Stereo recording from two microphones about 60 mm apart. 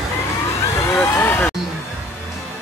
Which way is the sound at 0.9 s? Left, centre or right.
Left.